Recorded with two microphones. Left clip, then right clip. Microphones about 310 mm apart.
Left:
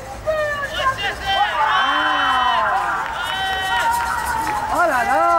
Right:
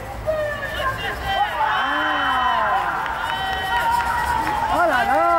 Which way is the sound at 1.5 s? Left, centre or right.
Centre.